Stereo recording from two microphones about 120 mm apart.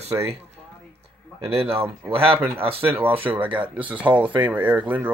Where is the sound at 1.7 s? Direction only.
50° right (ahead or behind).